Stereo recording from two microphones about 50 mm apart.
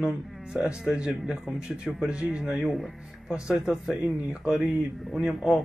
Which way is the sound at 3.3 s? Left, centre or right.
Centre.